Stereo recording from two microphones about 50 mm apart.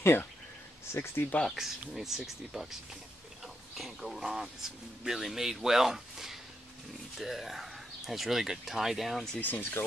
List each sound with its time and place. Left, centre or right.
0.0 s speech: left
1.5 s speech: centre
9.4 s speech: left